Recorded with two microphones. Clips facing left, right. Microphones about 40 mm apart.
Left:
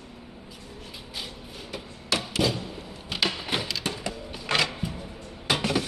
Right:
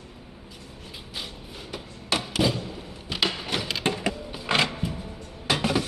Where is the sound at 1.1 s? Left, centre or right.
Centre.